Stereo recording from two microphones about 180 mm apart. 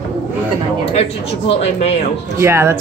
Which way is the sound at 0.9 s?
35° left (ahead or behind).